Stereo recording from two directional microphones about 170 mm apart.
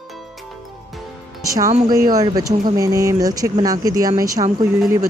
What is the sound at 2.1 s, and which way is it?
Speech, 20° right (ahead or behind).